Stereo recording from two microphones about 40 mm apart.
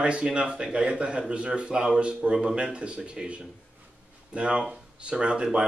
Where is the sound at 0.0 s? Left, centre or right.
Right.